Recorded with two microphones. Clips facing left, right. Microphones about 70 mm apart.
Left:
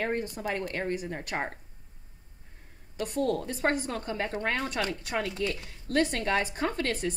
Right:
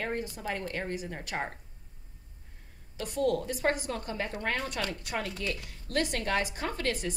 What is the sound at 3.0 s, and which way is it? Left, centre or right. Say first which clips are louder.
A woman's voice: even; left.